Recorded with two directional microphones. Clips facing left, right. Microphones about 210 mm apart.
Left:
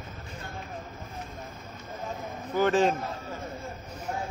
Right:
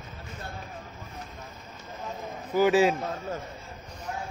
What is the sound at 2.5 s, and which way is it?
Speech, 10° right (ahead or behind).